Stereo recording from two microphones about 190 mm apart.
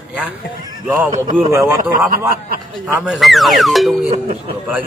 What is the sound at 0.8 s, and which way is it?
Speech, 10° right (ahead or behind).